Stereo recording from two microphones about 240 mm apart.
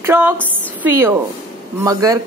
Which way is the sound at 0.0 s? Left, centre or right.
Centre.